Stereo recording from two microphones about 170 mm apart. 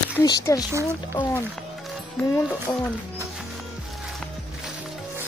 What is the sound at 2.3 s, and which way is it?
Speech, 15° left (ahead or behind).